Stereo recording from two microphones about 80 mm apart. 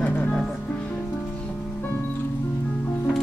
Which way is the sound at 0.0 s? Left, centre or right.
Left.